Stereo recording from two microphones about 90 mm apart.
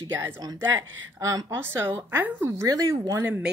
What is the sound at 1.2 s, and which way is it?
Speech, 40° right (ahead or behind).